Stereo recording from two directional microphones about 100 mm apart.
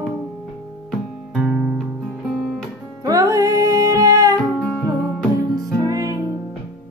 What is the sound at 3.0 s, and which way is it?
Music, 35° right (ahead or behind).